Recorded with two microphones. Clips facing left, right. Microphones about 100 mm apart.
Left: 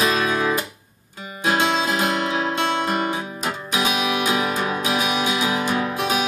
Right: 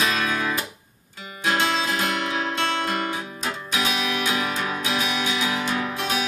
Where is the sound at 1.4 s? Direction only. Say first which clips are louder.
Left 3 dB; 10° left (ahead or behind).